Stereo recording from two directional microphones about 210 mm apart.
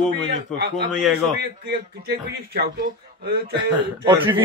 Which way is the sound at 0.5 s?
55° right (ahead or behind).